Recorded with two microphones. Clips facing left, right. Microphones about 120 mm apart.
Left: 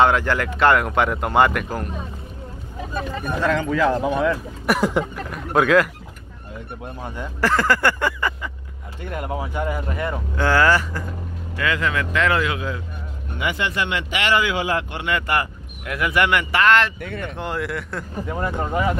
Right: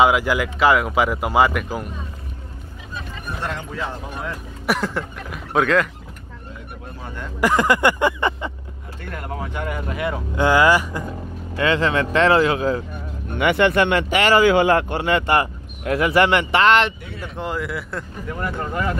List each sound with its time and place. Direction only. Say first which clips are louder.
0.0 s speech: right 1 dB; 10° right (ahead or behind)
3.3 s speech: left 8 dB; 90° left
4.6 s a sound: left 3 dB; 10° left (ahead or behind)
5.1 s speech: left 1 dB; centre (ahead or behind)
7.3 s speech: right 2 dB; 15° right (ahead or behind)
9.1 s speech: left 3 dB; 15° left (ahead or behind); by 10.2 s centre (ahead or behind)
10.3 s speech: right 2 dB; 15° right (ahead or behind)
11.5 s speech: right 4 dB; 30° right (ahead or behind)
13.4 s speech: right 8 dB; 60° right (ahead or behind); by 14.6 s 40° right (ahead or behind)
14.6 s speech: right 7 dB; 55° right (ahead or behind)
15.0 s speech: right 4 dB; 30° right (ahead or behind)
17.0 s speech: left 4 dB; 55° left (ahead or behind)
17.4 s speech: right 2 dB; centre (ahead or behind)
18.3 s speech: left 2 dB; 20° left (ahead or behind)